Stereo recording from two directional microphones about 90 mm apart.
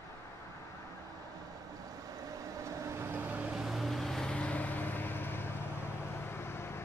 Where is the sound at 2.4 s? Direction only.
40° right (ahead or behind); by 3.5 s 20° right (ahead or behind).